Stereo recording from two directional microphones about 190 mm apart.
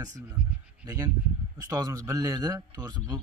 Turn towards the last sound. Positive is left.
turn(degrees=-20)  # may be behind; listen again after turning